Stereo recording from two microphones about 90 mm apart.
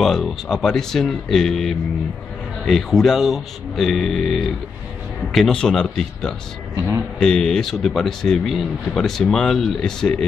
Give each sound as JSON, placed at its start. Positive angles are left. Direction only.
{"t": 0.0, "sound": "speech", "side_deg": 5}
{"t": 6.7, "sound": "a man's voice", "side_deg": -30}
{"t": 7.2, "sound": "speech", "side_deg": 5}